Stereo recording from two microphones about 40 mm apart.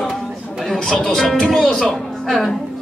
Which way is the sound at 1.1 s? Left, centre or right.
Centre.